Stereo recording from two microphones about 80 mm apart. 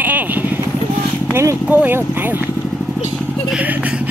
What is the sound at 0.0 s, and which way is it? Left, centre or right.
Vehicle, right.